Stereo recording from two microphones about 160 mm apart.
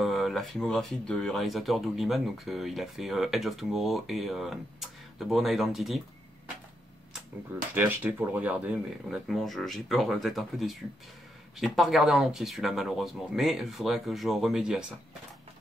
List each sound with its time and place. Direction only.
0.0 s speech: centre (ahead or behind)
7.7 s speech: 10° right (ahead or behind)